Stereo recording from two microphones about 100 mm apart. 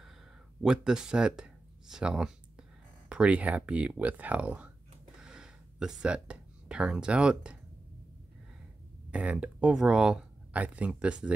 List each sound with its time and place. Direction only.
0.6 s speech: 5° right (ahead or behind)
5.2 s a sound: 5° right (ahead or behind)
9.1 s speech: 10° right (ahead or behind)